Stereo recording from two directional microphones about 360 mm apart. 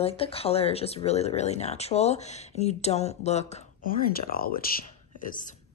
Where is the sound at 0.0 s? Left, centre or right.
Centre.